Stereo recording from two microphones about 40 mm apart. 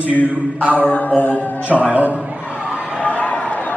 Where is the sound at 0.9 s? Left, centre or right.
Left.